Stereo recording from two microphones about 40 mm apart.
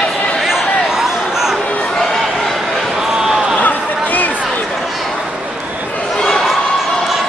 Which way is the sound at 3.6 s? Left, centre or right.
Left.